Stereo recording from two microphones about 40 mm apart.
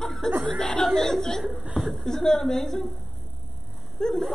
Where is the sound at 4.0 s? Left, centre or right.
Centre.